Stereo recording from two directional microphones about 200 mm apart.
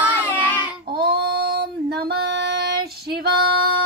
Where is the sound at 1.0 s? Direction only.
50° right (ahead or behind).